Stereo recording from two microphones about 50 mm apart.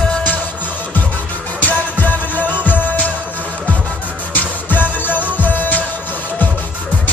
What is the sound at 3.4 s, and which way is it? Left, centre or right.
Music, left.